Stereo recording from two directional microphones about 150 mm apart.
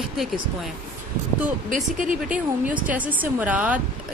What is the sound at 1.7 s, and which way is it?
Speech, 60° right (ahead or behind).